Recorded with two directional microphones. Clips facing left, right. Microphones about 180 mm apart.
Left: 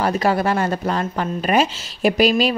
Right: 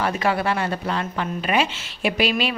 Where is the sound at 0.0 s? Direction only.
40° left (ahead or behind).